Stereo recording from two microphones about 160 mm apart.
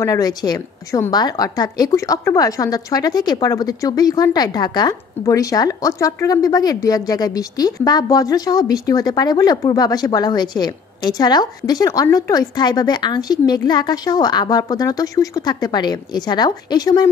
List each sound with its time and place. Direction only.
0.0 s a woman's voice: 20° left (ahead or behind)